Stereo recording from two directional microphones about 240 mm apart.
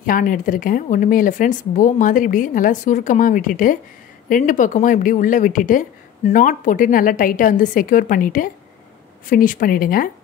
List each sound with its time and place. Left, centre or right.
0.0 s a woman's voice: left